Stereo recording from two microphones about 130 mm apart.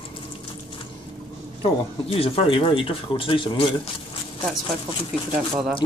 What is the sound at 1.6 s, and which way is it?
Speech, 45° left (ahead or behind).